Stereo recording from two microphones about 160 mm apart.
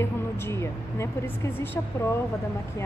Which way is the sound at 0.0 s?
15° left (ahead or behind).